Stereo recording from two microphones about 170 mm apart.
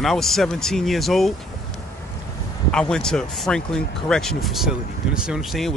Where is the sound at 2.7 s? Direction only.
5° left (ahead or behind).